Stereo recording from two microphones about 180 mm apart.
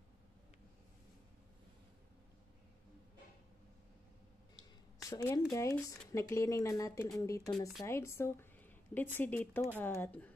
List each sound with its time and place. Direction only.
5.0 s a woman's voice: 15° left (ahead or behind)